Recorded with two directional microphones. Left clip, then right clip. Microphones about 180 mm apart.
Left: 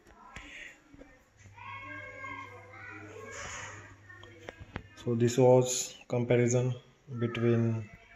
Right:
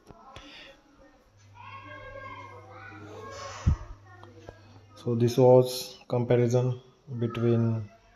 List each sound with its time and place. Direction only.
0.5 s music: 20° right (ahead or behind)
5.0 s speech: 10° right (ahead or behind)